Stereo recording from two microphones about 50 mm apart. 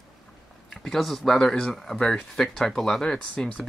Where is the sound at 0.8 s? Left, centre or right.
Centre.